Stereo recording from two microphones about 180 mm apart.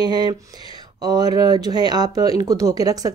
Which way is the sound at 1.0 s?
20° right (ahead or behind).